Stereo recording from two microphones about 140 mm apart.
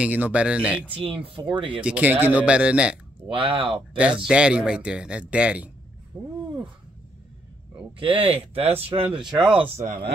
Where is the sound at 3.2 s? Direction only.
40° right (ahead or behind).